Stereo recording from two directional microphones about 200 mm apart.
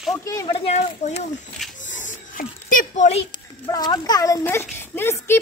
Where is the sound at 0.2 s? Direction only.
15° left (ahead or behind).